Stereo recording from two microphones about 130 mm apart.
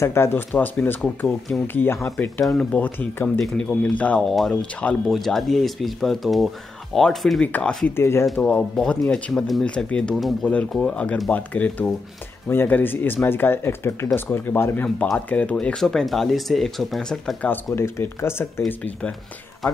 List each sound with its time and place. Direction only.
0.0 s speech: 20° left (ahead or behind)
8.3 s speech: 10° left (ahead or behind)
17.6 s speech: 20° left (ahead or behind)